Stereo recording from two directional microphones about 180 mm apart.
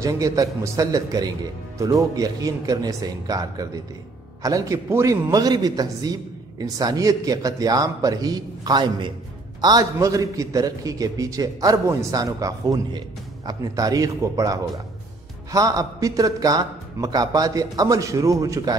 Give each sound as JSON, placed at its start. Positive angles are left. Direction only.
{"t": 0.0, "sound": "a man's voice", "side_deg": -20}